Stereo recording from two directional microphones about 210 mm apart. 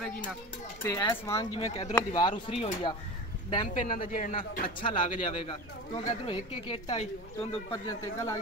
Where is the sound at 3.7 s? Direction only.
40° left (ahead or behind).